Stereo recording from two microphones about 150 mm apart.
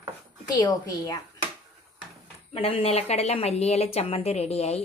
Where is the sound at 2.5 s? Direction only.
40° left (ahead or behind).